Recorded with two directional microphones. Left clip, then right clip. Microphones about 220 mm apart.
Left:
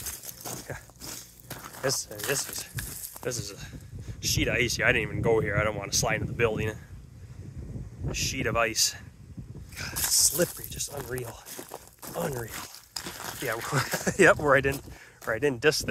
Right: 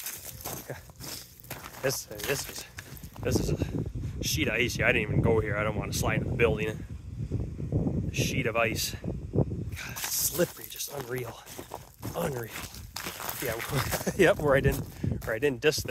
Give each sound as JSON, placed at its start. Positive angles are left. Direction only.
{"t": 1.9, "sound": "speech", "side_deg": -5}
{"t": 8.1, "sound": "speech", "side_deg": 0}
{"t": 9.8, "sound": "a sound", "side_deg": 0}
{"t": 13.4, "sound": "speech", "side_deg": 0}